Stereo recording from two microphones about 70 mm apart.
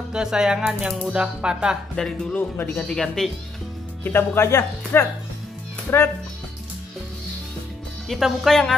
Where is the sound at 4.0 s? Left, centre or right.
Left.